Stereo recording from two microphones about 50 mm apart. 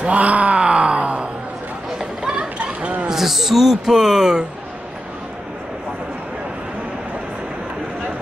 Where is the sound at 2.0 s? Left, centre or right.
Centre.